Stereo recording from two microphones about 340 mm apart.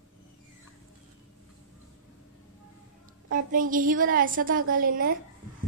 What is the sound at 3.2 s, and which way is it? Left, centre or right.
Speech, right.